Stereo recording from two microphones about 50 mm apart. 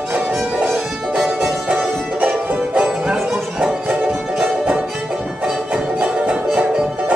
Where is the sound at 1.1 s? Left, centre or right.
Centre.